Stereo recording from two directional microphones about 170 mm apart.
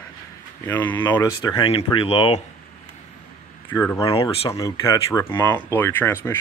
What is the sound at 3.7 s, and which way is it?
Speech, 10° left (ahead or behind).